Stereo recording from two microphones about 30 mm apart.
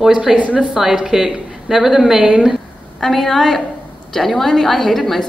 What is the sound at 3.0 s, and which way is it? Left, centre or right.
A woman's voice, centre.